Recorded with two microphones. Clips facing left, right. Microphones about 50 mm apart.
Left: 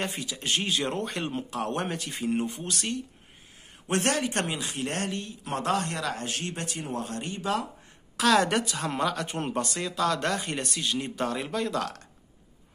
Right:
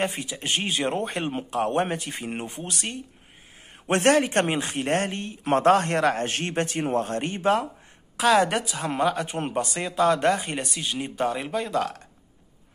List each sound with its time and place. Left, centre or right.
0.0 s a man's voice: right
3.8 s a man's voice: right
8.2 s a woman's voice: centre